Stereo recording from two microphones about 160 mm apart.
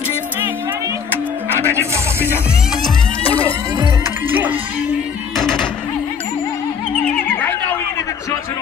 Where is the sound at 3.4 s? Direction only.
35° left (ahead or behind).